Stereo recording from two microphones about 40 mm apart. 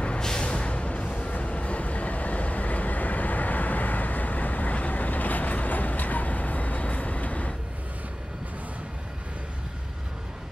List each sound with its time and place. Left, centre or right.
0.2 s music: centre
0.5 s music: left